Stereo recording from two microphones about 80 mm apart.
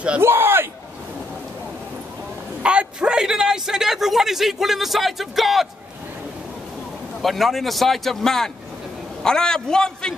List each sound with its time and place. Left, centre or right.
0.2 s a sound: right
2.6 s a man's voice: centre
7.2 s a man's voice: centre